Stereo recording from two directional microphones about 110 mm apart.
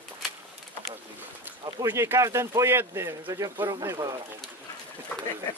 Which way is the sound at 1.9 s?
25° right (ahead or behind).